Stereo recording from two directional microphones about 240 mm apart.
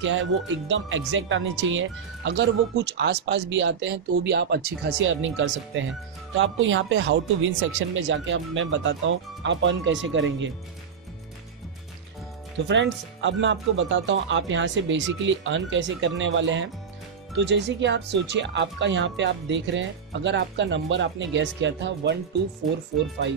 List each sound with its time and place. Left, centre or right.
0.0 s speech: right
12.6 s speech: right